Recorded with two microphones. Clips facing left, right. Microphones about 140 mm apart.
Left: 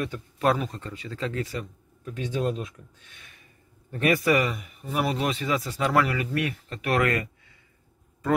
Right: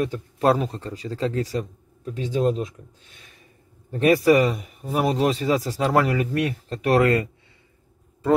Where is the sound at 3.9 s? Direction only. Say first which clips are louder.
Right 6 dB; 35° right (ahead or behind).